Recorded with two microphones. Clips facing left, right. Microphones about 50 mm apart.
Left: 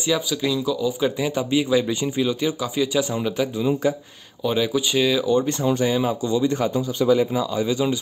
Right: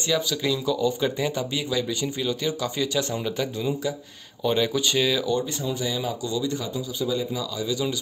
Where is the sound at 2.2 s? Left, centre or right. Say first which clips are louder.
Left 4 dB; centre.